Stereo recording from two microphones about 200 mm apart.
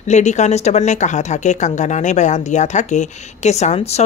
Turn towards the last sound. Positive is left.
turn(degrees=30)  # may be behind; listen again after turning